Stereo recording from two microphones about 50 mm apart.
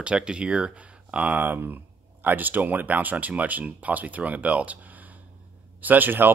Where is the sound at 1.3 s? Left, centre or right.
Right.